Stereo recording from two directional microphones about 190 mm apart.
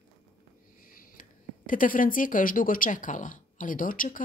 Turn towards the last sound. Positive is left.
turn(degrees=45)  # may be behind; listen again after turning